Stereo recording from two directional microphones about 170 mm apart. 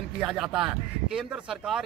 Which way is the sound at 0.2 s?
5° right (ahead or behind).